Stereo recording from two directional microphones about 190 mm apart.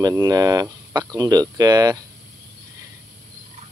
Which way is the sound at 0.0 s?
20° right (ahead or behind).